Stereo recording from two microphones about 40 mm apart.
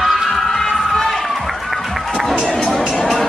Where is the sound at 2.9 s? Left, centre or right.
Left.